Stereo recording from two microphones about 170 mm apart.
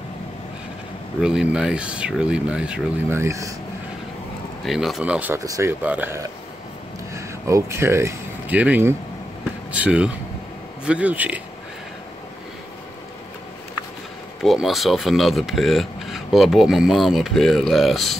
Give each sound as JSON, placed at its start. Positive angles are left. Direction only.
{"t": 1.2, "sound": "speech", "side_deg": -5}
{"t": 4.6, "sound": "speech", "side_deg": 0}
{"t": 14.4, "sound": "speech", "side_deg": 0}